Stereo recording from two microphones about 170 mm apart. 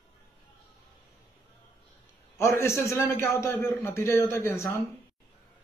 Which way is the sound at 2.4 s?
15° left (ahead or behind).